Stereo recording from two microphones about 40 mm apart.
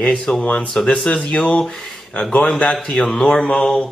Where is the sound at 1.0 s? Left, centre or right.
Left.